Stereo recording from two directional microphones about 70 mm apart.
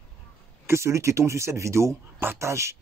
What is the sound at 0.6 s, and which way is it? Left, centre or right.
Speech, right.